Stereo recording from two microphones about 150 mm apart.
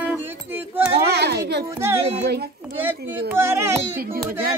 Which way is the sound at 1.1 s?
90° right.